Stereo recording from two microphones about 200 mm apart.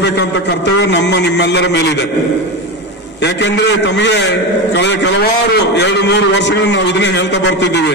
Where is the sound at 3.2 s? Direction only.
60° left (ahead or behind).